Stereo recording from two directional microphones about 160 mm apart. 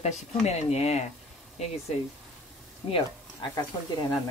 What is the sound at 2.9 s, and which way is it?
Speech, 35° left (ahead or behind).